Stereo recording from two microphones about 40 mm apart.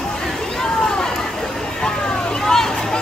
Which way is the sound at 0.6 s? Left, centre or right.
Centre.